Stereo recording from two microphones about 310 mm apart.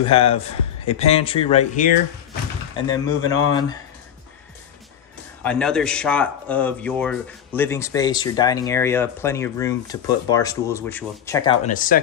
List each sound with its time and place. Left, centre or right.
0.0 s speech: centre
2.9 s speech: centre
5.4 s speech: centre; by 12.0 s left